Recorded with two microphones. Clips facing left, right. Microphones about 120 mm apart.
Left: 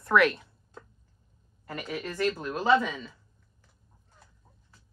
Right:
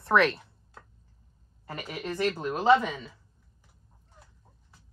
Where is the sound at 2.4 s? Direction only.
25° right (ahead or behind).